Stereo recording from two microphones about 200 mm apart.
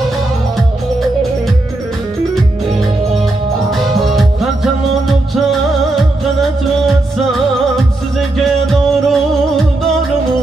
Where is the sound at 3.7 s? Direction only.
Centre (ahead or behind).